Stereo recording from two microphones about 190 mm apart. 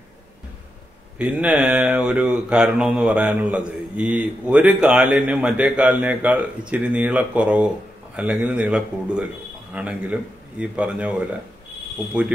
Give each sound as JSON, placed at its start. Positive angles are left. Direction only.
{"t": 1.1, "sound": "speech", "side_deg": -5}